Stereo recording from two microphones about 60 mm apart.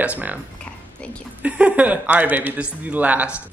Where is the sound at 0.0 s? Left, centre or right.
Right.